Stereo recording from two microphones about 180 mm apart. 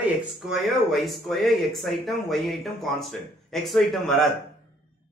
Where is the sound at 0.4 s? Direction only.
Centre (ahead or behind).